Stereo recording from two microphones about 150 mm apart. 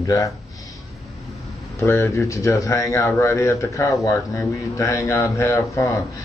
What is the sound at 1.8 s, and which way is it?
Speech, 20° left (ahead or behind).